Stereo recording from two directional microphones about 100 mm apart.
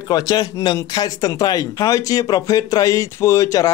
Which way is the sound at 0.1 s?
40° left (ahead or behind).